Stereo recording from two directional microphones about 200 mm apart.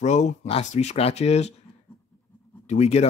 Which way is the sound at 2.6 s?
35° left (ahead or behind).